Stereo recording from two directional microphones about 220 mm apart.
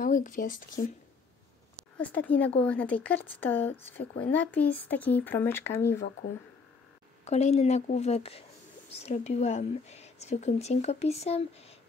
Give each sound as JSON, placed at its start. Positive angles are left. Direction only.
{"t": 0.0, "sound": "speech", "side_deg": 35}
{"t": 2.0, "sound": "speech", "side_deg": 5}
{"t": 7.2, "sound": "speech", "side_deg": 30}